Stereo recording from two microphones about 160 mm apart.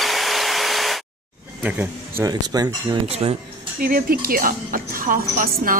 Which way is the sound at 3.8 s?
65° right (ahead or behind).